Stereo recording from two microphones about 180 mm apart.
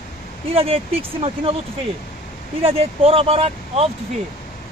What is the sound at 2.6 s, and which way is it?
Speech, 35° right (ahead or behind).